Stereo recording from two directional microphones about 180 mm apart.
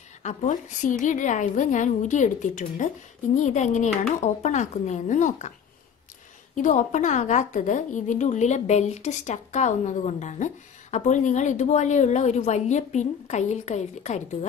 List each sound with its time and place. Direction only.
0.2 s a woman's voice: 45° left (ahead or behind)
6.5 s a woman's voice: 45° left (ahead or behind)